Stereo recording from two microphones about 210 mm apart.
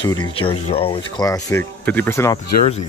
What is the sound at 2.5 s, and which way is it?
Speech, 35° left (ahead or behind).